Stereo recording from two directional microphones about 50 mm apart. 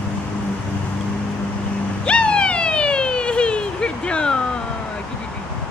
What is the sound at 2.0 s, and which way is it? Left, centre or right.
Police car, left.